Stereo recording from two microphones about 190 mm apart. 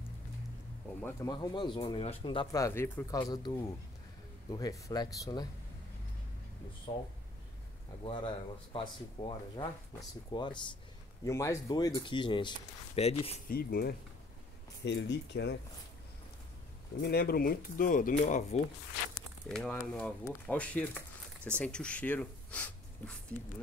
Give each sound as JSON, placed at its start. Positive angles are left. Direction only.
{"t": 0.8, "sound": "speech", "side_deg": 10}
{"t": 1.3, "sound": "speech", "side_deg": 25}
{"t": 6.9, "sound": "speech", "side_deg": 25}
{"t": 9.2, "sound": "speech", "side_deg": 15}
{"t": 13.5, "sound": "speech", "side_deg": 55}
{"t": 14.9, "sound": "speech", "side_deg": 65}
{"t": 17.0, "sound": "speech", "side_deg": 55}
{"t": 19.4, "sound": "speech", "side_deg": 5}